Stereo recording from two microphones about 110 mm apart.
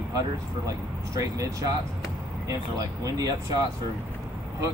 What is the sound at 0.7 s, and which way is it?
Speech, 30° right (ahead or behind).